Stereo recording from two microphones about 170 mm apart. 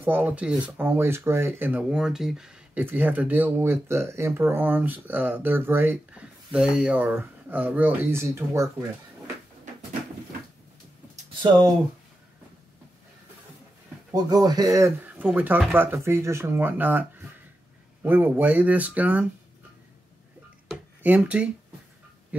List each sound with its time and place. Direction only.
0.0 s speech: 10° right (ahead or behind)
11.4 s speech: 20° right (ahead or behind)
14.1 s speech: 20° right (ahead or behind)
18.0 s speech: 10° right (ahead or behind)
20.7 s a sound: 10° right (ahead or behind)